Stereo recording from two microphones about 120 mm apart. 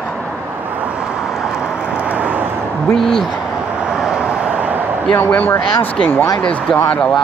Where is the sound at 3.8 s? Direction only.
5° right (ahead or behind).